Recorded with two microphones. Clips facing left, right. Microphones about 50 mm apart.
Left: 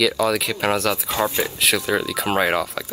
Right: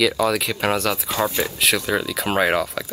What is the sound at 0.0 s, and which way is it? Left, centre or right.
Speech, centre.